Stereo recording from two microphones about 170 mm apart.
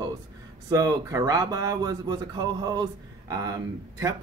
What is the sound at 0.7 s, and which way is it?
Speech, 20° right (ahead or behind).